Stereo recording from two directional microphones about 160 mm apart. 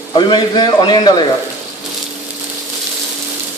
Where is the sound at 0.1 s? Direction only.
30° left (ahead or behind).